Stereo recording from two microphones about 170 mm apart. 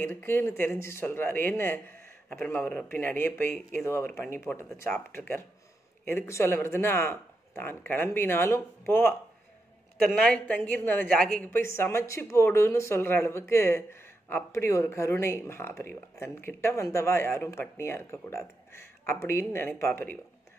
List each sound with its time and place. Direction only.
0.0 s a woman's voice: 15° left (ahead or behind)